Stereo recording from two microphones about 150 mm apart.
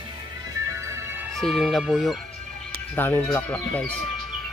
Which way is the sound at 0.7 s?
20° right (ahead or behind).